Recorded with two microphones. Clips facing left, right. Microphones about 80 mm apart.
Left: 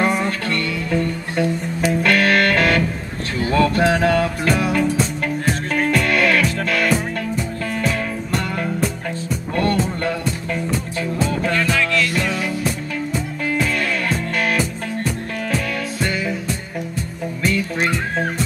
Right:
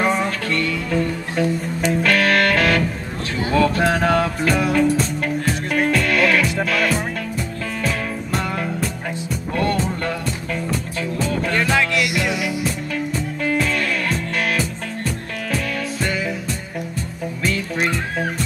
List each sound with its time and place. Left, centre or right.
0.2 s music: centre
11.8 s music: centre
12.6 s music: centre
17.8 s music: centre